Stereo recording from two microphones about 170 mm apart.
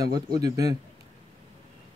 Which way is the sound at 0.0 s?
25° right (ahead or behind).